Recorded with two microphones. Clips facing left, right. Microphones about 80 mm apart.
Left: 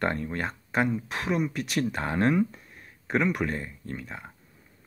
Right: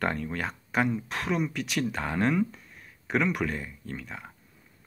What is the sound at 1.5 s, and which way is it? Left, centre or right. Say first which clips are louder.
Speech: left 2 dB; left.